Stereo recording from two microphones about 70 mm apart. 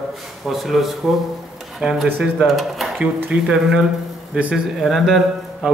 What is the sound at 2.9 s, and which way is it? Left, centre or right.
Speech, right.